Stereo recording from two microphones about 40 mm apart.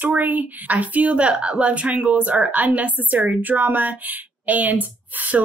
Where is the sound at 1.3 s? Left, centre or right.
Right.